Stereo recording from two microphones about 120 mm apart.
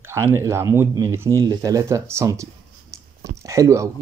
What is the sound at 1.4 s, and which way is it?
Speech, 30° right (ahead or behind).